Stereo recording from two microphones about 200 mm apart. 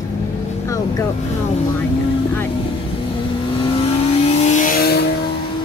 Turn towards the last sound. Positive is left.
turn(degrees=50)  # may be behind; listen again after turning